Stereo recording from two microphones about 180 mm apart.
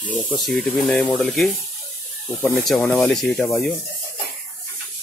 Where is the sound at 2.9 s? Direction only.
5° left (ahead or behind).